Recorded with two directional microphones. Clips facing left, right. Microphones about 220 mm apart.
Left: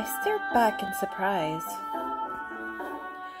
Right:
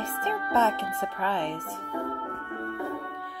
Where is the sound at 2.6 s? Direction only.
30° right (ahead or behind).